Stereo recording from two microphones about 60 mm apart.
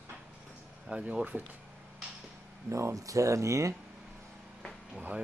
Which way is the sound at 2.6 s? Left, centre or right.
Right.